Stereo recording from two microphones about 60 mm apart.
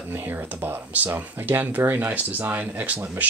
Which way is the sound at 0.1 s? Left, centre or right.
Right.